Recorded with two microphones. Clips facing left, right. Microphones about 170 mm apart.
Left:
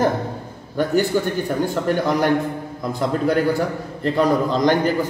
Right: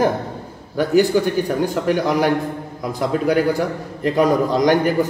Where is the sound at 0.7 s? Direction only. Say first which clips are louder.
Right 3 dB; 10° right (ahead or behind).